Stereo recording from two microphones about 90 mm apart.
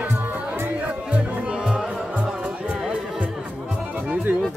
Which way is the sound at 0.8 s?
15° right (ahead or behind).